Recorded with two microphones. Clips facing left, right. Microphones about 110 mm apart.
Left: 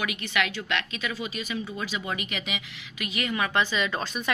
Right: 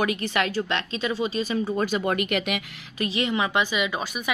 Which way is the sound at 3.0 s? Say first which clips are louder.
Right 4 dB; 30° right (ahead or behind).